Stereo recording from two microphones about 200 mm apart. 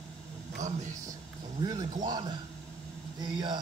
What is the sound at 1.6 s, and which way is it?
Speech, 20° right (ahead or behind).